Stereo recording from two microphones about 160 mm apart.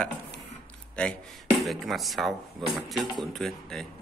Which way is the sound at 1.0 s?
5° left (ahead or behind).